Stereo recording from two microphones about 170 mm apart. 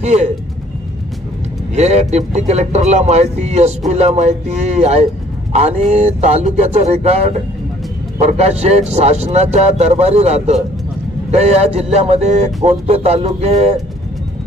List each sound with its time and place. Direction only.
0.0 s speech: 40° right (ahead or behind)
1.8 s speech: 40° right (ahead or behind)